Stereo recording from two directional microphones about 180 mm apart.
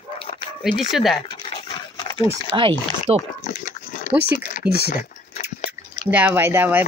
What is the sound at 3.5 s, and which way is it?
Pig, 45° left (ahead or behind).